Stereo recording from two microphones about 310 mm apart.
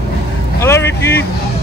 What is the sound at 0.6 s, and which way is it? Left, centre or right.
Vehicle, centre.